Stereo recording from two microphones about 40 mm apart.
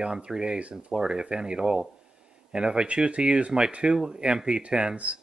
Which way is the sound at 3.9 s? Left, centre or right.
Centre.